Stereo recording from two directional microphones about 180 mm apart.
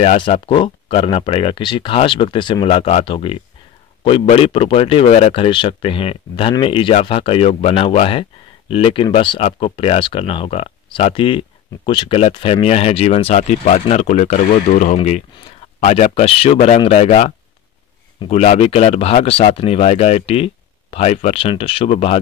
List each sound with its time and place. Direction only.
0.0 s speech: 35° left (ahead or behind)